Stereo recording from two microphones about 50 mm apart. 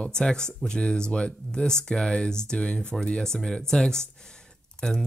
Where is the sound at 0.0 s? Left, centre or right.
Centre.